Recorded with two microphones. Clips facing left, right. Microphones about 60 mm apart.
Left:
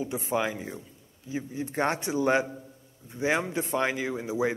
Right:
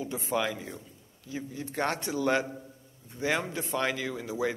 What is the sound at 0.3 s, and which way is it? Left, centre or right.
Speech, left.